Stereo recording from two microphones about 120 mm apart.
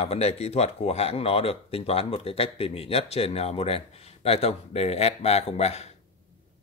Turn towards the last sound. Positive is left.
turn(degrees=60)  # may be behind; listen again after turning